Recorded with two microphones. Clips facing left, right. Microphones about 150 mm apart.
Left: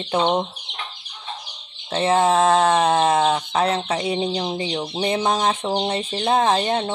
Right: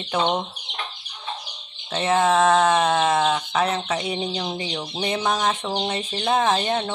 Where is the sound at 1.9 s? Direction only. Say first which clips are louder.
Left 2 dB; 30° left (ahead or behind).